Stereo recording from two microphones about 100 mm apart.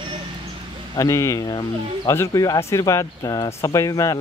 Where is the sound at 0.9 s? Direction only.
30° left (ahead or behind).